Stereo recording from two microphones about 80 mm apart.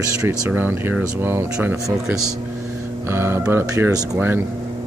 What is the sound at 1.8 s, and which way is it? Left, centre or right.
Speech, centre.